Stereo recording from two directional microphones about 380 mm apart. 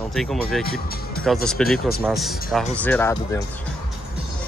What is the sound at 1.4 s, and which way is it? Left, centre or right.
Speech, centre.